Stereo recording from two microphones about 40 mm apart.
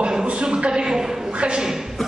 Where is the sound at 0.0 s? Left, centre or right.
Right.